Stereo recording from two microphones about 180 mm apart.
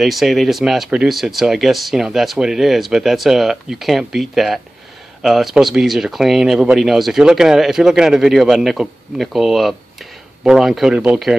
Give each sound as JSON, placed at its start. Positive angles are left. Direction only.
{"t": 0.0, "sound": "speech", "side_deg": 0}